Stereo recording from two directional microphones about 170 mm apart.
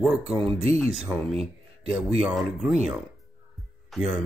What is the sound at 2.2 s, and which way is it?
Speech, centre (ahead or behind).